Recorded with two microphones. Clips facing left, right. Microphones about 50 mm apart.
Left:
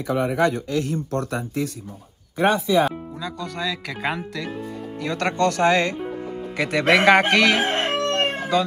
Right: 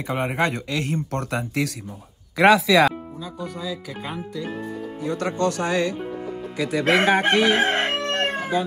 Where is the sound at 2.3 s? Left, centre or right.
Right.